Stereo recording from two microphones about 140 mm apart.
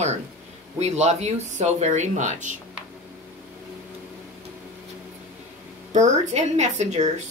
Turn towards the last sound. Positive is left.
turn(degrees=-55)  # may be behind; listen again after turning